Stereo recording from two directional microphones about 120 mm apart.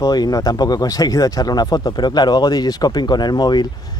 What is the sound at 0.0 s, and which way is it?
Speech, 30° left (ahead or behind).